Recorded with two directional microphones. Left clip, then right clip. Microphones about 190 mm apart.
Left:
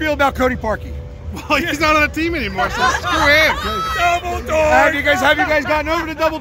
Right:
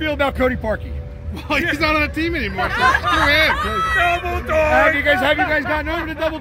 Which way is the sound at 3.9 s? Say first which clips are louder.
Left 3 dB; 75° left (ahead or behind).